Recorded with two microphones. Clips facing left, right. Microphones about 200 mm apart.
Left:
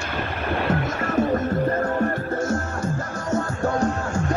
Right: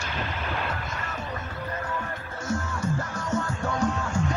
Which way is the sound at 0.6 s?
55° left (ahead or behind).